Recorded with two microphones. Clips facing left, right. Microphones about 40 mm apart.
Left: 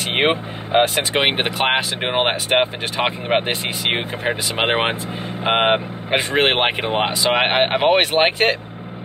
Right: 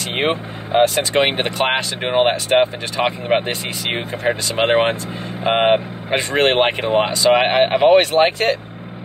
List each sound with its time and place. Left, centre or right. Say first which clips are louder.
0.1 s speech: left 2 dB; left
1.2 s speech: right 1 dB; centre
3.4 s speech: left 2 dB; left
4.2 s speech: right 2 dB; centre
8.1 s speech: right 1 dB; left